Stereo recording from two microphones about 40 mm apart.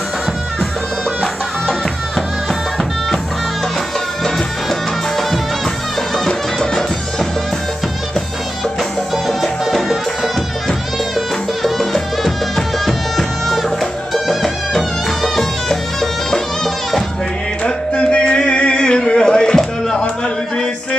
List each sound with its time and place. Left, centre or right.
4.2 s music: centre
9.4 s music: centre
17.6 s a sound: left